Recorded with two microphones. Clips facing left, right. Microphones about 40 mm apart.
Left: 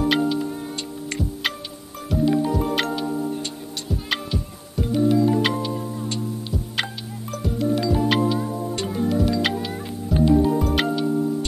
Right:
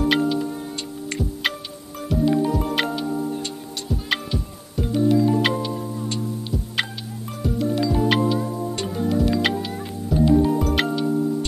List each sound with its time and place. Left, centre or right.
0.0 s music: centre